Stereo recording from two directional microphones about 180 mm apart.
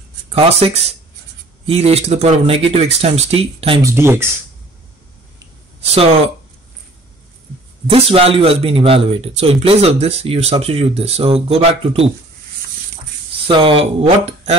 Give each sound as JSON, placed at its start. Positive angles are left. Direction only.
{"t": 0.3, "sound": "speech", "side_deg": -35}
{"t": 3.8, "sound": "speech", "side_deg": -15}
{"t": 5.8, "sound": "speech", "side_deg": -35}
{"t": 7.9, "sound": "speech", "side_deg": -30}
{"t": 13.5, "sound": "speech", "side_deg": -30}